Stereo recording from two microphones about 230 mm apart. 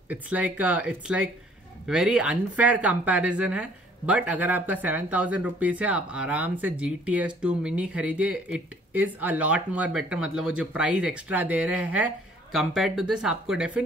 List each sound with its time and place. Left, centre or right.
0.1 s speech: centre